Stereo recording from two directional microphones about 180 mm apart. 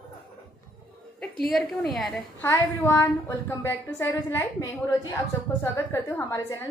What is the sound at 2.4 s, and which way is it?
A woman's voice, 15° left (ahead or behind).